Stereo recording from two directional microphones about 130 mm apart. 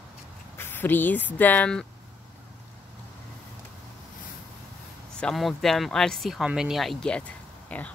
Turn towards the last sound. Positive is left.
turn(degrees=10)  # may be behind; listen again after turning